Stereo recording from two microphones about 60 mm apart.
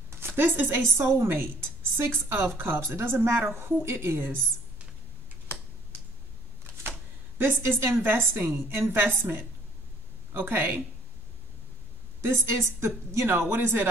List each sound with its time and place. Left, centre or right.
0.3 s a woman's voice: right
7.3 s a woman's voice: right
12.2 s a woman's voice: right